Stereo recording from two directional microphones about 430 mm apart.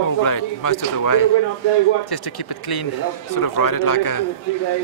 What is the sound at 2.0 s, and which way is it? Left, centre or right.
A man's voice, left.